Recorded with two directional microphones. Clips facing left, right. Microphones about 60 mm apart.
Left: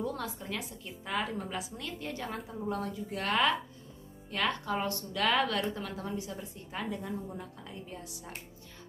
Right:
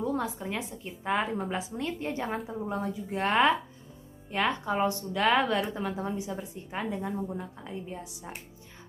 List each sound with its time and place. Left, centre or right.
0.0 s a sound: right
0.5 s a woman's voice: right
2.3 s a woman's voice: centre